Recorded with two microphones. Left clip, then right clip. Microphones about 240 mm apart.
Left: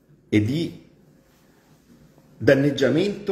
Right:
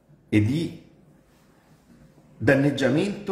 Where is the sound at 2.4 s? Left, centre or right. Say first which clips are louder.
Left 3 dB; centre.